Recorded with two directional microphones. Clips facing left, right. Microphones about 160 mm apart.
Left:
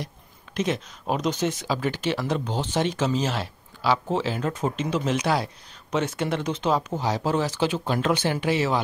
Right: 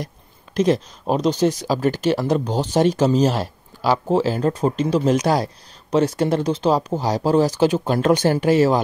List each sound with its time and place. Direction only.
0.6 s speech: 35° right (ahead or behind)